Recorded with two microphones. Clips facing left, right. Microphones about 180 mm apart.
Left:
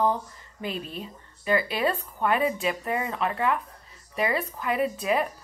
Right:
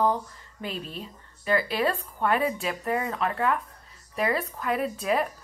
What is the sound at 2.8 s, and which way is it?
Speech, 10° left (ahead or behind).